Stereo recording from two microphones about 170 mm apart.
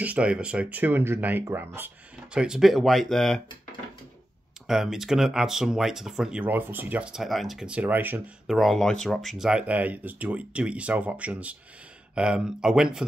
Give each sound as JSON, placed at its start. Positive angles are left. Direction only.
{"t": 0.0, "sound": "speech", "side_deg": -10}
{"t": 4.6, "sound": "speech", "side_deg": -5}
{"t": 8.5, "sound": "speech", "side_deg": 0}